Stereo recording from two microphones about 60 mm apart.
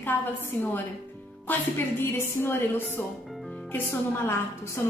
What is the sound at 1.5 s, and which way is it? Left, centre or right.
Speech, left.